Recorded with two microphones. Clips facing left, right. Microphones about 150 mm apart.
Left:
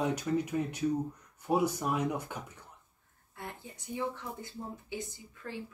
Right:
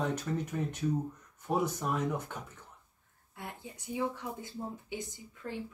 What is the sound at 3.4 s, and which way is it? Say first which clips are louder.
Speech: even; 15° right (ahead or behind).